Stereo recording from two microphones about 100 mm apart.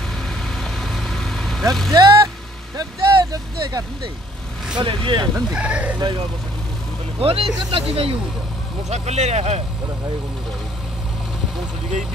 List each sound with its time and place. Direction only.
0.3 s vehicle: 5° left (ahead or behind)
1.9 s speech: 30° right (ahead or behind)
4.7 s speech: 50° right (ahead or behind)
5.5 s speech: 10° right (ahead or behind)
7.2 s speech: 75° right (ahead or behind)
8.9 s speech: 90° right